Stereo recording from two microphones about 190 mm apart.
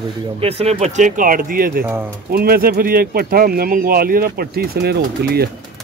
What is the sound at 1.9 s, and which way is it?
Speech, 10° right (ahead or behind).